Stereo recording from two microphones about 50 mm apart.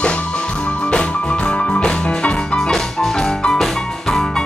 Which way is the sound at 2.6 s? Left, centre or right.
Centre.